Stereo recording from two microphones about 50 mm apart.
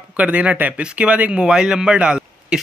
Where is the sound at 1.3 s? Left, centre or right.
Centre.